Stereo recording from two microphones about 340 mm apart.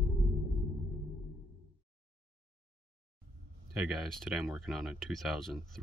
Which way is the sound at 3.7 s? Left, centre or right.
Centre.